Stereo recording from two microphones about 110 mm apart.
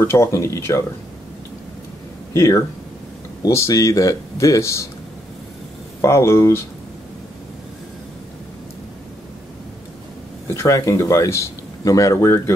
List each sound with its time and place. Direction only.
0.0 s speech: 25° left (ahead or behind)
2.3 s speech: 30° left (ahead or behind)
5.9 s speech: 25° left (ahead or behind)
10.5 s speech: 25° left (ahead or behind)